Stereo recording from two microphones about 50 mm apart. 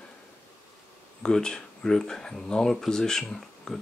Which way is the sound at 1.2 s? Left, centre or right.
Centre.